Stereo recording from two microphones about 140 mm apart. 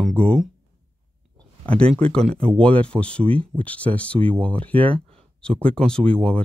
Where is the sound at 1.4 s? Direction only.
10° left (ahead or behind).